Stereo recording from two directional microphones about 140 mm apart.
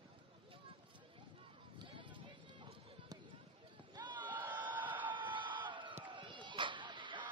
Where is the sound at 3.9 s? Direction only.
35° right (ahead or behind).